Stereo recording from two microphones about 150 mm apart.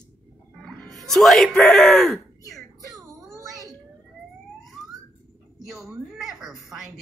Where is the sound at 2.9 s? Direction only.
20° right (ahead or behind).